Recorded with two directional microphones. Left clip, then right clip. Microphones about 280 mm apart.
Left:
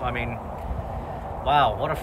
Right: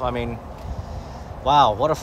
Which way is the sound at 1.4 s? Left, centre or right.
Centre.